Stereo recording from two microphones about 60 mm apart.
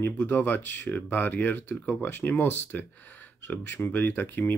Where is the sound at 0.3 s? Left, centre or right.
Left.